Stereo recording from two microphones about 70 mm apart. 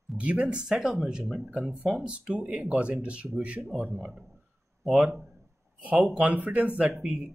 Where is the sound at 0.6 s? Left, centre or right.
Centre.